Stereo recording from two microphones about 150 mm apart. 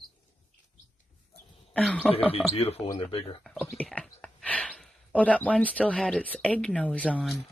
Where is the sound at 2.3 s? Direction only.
40° left (ahead or behind).